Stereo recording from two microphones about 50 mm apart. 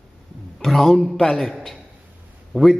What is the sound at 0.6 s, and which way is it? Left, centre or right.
Speech, centre.